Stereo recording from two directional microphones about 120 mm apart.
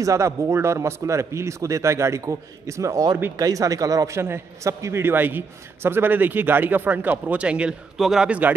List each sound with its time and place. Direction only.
0.0 s a man's voice: 25° right (ahead or behind)